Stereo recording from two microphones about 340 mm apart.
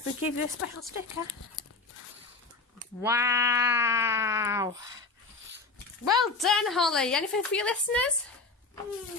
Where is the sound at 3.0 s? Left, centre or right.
Centre.